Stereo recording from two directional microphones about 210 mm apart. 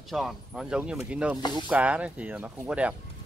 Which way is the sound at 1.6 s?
5° right (ahead or behind).